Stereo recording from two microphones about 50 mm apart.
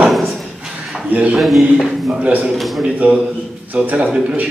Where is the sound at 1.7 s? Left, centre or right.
Centre.